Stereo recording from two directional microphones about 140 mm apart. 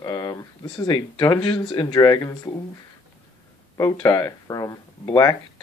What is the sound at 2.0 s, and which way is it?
Speech, 25° left (ahead or behind).